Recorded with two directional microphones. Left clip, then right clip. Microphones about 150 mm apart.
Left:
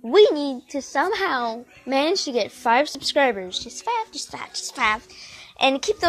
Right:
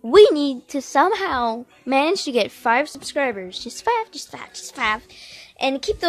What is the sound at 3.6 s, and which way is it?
Speech, 40° right (ahead or behind).